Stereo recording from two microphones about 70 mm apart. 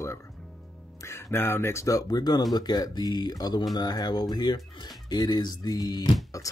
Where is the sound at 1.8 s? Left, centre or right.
Left.